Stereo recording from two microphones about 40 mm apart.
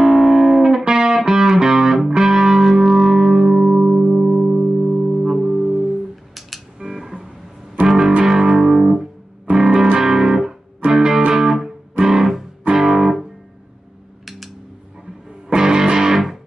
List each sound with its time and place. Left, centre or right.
0.0 s music: centre
0.8 s music: centre
4.0 s music: centre
4.8 s music: centre
9.5 s music: centre
15.2 s music: centre